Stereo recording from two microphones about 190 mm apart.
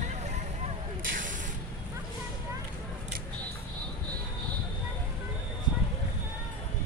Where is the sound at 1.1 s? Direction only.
45° right (ahead or behind).